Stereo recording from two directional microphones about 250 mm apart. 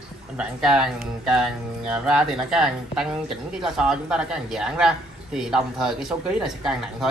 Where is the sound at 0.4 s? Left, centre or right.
Centre.